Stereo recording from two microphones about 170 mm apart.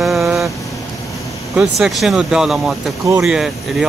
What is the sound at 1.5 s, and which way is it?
Speech, 5° right (ahead or behind).